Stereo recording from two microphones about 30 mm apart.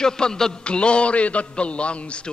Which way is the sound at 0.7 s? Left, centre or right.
Left.